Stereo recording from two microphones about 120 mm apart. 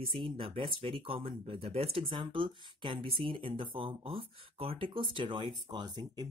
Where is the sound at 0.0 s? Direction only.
45° right (ahead or behind).